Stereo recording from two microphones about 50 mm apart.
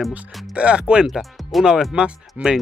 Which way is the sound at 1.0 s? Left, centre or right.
Centre.